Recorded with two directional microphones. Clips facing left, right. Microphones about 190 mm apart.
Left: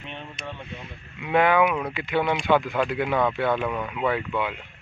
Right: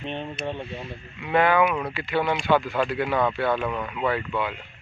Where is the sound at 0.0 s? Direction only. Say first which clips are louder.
Right 7 dB; 30° right (ahead or behind).